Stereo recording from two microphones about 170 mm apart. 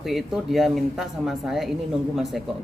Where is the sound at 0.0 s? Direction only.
Centre (ahead or behind).